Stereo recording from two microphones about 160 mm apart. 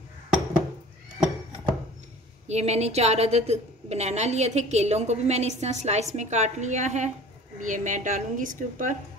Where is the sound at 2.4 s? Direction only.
40° right (ahead or behind).